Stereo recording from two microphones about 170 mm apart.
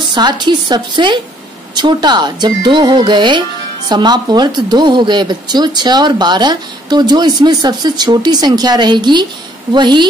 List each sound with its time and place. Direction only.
0.1 s speech: 25° right (ahead or behind)